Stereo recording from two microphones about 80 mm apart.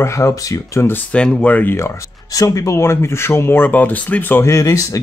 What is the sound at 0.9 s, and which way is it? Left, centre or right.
Speech, centre.